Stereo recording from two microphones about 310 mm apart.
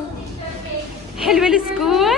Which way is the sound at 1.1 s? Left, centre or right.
Centre.